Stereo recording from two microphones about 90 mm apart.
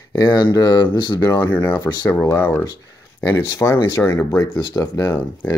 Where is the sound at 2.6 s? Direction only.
35° left (ahead or behind).